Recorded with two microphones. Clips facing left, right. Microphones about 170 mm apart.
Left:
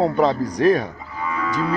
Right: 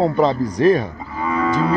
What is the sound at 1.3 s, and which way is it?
Moo, 35° right (ahead or behind).